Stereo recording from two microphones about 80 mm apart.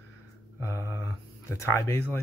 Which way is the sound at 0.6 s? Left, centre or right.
Left.